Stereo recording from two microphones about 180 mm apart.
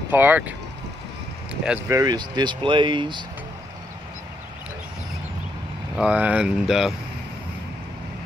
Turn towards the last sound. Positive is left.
turn(degrees=0)  # may be behind; listen again after turning